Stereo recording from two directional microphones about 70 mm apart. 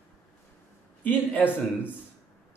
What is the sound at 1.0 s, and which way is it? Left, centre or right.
Speech, left.